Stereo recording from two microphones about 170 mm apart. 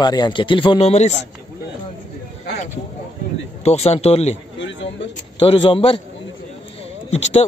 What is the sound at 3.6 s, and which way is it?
Speech, 40° left (ahead or behind).